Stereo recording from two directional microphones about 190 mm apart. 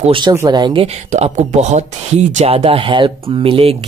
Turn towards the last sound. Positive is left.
turn(degrees=-30)  # may be behind; listen again after turning